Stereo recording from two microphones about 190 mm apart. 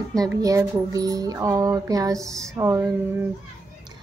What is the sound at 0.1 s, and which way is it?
Speech, 20° right (ahead or behind).